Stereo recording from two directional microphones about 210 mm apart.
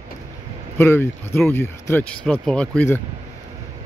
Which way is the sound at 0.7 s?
10° left (ahead or behind).